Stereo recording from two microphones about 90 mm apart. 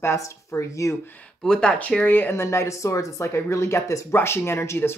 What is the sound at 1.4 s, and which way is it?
Speech, 10° left (ahead or behind).